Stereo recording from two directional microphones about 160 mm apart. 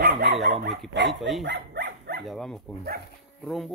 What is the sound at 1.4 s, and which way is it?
Dog, 90° right.